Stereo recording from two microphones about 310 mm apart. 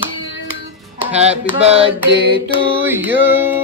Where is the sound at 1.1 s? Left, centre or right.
Centre.